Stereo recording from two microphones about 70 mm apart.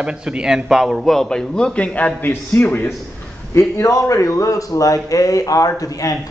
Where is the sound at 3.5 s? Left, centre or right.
Left.